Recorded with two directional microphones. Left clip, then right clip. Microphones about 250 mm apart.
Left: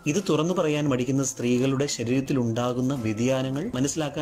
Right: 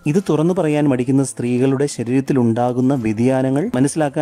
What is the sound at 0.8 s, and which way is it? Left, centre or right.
Speech, right.